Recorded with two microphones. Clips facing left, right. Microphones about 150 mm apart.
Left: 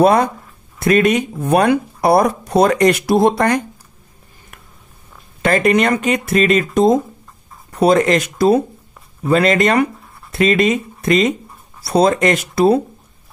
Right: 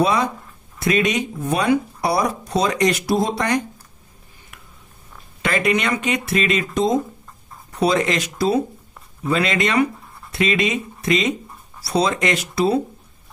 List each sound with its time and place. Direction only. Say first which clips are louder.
0.0 s speech: left 6 dB; 55° left (ahead or behind)
5.4 s speech: left 6 dB; 45° left (ahead or behind)